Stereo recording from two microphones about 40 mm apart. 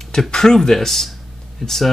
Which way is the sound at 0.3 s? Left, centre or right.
Centre.